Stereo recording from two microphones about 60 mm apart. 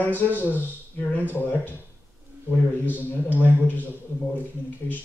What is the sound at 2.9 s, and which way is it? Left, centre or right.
Speech, left.